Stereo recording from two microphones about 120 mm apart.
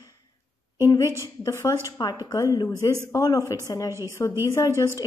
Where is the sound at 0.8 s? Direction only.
25° left (ahead or behind).